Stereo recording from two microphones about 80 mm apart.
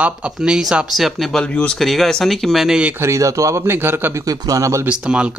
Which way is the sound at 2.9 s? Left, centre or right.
Right.